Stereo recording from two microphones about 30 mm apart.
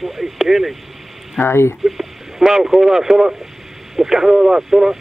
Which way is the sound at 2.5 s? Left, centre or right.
Centre.